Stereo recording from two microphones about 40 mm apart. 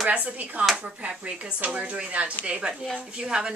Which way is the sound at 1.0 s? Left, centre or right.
Right.